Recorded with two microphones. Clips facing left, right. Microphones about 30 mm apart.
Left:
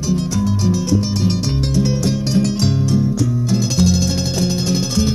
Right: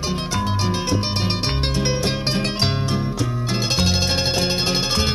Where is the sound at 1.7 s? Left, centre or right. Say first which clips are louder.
Left 6 dB; right.